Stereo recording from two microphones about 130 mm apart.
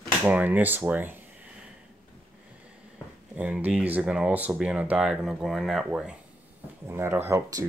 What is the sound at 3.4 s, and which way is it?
Speech, 10° right (ahead or behind).